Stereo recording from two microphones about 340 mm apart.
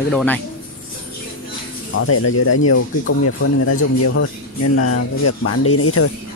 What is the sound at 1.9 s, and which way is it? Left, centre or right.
Speech, left.